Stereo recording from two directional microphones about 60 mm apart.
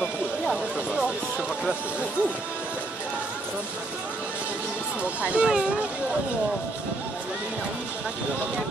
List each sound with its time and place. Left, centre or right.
5.2 s speech: right